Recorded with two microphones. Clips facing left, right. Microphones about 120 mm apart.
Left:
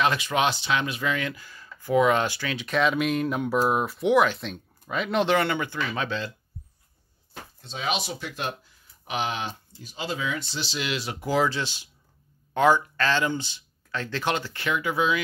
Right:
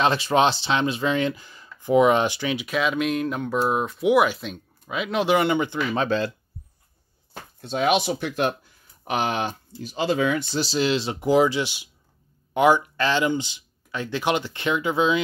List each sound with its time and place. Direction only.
0.0 s speech: 30° right (ahead or behind)
2.6 s speech: 5° right (ahead or behind)
4.1 s speech: 10° right (ahead or behind)
5.9 s speech: 45° right (ahead or behind)
7.6 s speech: 55° right (ahead or behind)
10.6 s speech: 35° right (ahead or behind)